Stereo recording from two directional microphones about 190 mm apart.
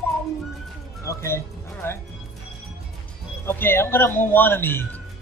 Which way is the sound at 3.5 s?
10° left (ahead or behind).